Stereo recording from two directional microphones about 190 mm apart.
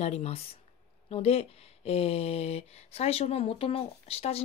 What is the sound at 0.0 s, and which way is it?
Speech, 35° left (ahead or behind).